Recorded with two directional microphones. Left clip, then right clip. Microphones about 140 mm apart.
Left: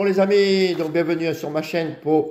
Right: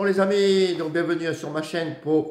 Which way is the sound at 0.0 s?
10° left (ahead or behind).